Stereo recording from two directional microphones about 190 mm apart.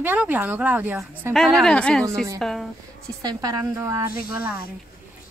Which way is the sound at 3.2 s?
20° right (ahead or behind).